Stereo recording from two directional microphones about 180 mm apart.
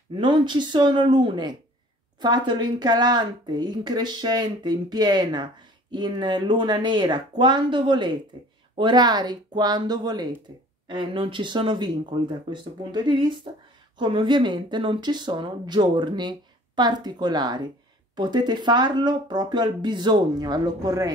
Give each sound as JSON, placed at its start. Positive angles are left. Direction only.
{"t": 0.1, "sound": "speech", "side_deg": -25}